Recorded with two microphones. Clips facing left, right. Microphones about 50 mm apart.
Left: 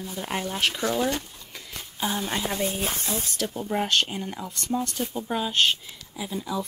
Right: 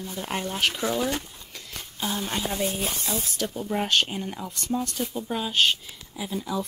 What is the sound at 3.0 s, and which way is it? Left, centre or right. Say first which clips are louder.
Speech: even; left.